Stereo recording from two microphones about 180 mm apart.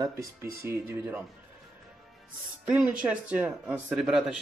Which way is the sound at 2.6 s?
5° right (ahead or behind).